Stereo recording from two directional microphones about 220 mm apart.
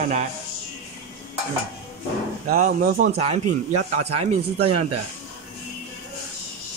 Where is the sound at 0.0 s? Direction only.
30° right (ahead or behind).